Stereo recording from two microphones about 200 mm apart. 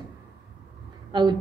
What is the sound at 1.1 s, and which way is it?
Speech, 20° right (ahead or behind).